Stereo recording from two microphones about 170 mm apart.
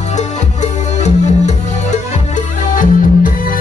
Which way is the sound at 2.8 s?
50° left (ahead or behind).